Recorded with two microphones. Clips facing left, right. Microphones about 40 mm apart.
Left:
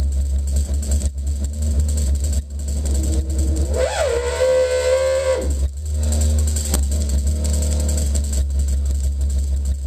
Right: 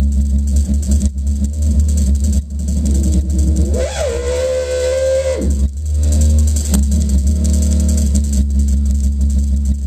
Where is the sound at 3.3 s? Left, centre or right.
Centre.